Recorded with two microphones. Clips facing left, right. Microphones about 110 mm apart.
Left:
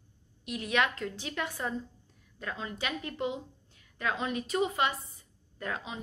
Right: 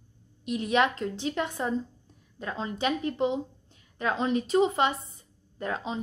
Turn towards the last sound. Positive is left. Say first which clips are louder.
# right 5 dB
turn(degrees=-25)  # may be behind; listen again after turning